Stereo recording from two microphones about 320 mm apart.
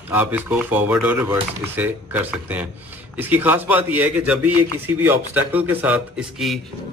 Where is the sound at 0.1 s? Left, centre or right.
Centre.